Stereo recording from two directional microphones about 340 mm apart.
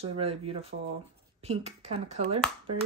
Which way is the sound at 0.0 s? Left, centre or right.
Centre.